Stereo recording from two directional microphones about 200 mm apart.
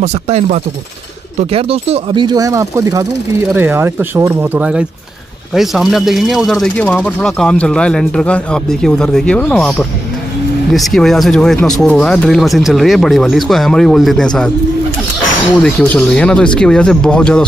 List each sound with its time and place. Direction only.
0.0 s speech: 35° right (ahead or behind); by 14.5 s 5° left (ahead or behind)
15.6 s speech: 5° left (ahead or behind)